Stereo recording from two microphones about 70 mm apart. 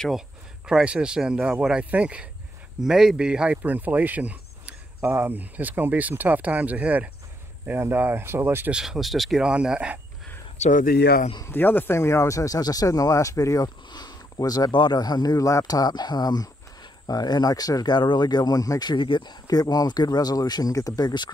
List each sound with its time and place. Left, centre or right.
0.7 s speech: centre
2.8 s speech: centre; by 8.7 s right
8.7 s speech: centre
9.4 s speech: centre
11.4 s speech: left
13.8 s speech: left
15.3 s speech: left
15.7 s speech: left
20.7 s speech: left